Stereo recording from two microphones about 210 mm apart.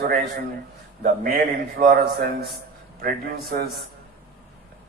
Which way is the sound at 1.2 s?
40° right (ahead or behind).